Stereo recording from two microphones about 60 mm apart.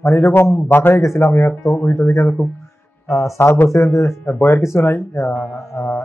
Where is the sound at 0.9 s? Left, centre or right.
Left.